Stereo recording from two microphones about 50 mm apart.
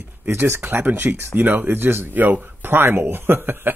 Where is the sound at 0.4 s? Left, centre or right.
Right.